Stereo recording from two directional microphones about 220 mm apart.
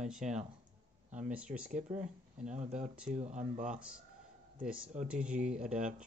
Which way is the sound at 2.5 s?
30° right (ahead or behind).